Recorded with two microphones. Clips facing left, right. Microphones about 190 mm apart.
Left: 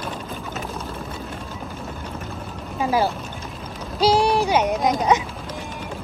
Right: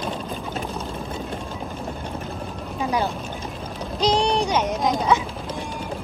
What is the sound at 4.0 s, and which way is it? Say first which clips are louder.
Speech: left 3 dB; 5° left (ahead or behind).